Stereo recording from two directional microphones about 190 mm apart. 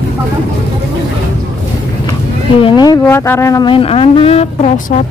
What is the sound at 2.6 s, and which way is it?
Speech, 20° left (ahead or behind).